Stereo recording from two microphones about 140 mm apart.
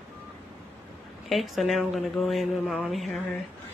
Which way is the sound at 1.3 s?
Centre (ahead or behind).